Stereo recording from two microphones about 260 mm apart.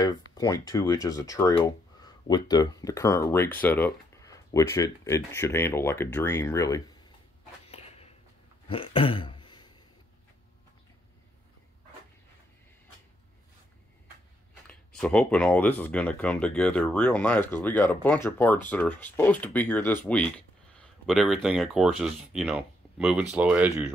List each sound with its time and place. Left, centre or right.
0.3 s speech: centre
7.6 s a sound: left
14.7 s speech: centre